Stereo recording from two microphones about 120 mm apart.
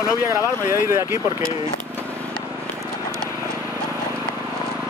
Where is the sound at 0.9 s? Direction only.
20° right (ahead or behind).